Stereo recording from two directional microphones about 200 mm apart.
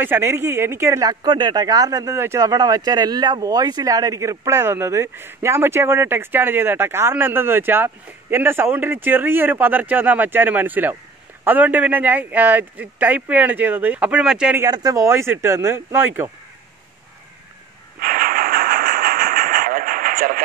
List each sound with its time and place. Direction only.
0.0 s speech: 10° right (ahead or behind)
14.7 s speech: 20° right (ahead or behind)
18.0 s train: 45° right (ahead or behind)